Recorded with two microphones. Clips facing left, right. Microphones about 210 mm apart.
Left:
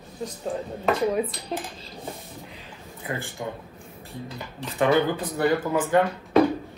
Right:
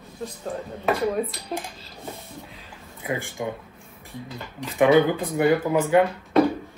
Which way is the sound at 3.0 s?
15° right (ahead or behind).